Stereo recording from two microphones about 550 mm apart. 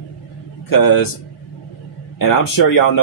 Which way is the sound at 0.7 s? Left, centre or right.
Left.